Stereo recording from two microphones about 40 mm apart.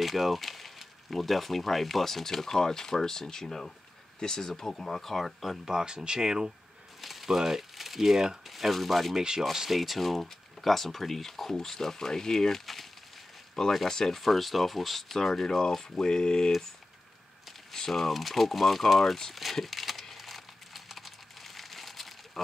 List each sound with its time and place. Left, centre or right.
0.0 s speech: centre
5.7 s speech: centre
7.0 s speech: centre
9.1 s speech: centre
9.6 s speech: centre
13.8 s speech: centre
14.2 s speech: centre
17.7 s speech: centre
19.3 s crumpling: centre